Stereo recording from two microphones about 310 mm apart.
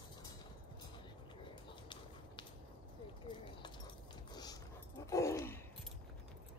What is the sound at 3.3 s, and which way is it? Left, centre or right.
Dog, centre.